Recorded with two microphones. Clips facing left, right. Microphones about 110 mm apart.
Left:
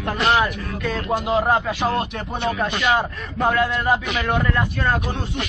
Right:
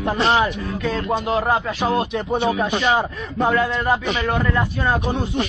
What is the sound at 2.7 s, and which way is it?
Speech, 25° right (ahead or behind).